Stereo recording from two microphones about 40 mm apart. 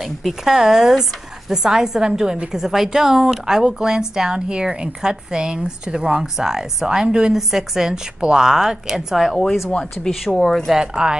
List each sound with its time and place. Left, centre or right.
0.0 s a woman's voice: centre
10.3 s speech: centre
10.7 s a woman's voice: centre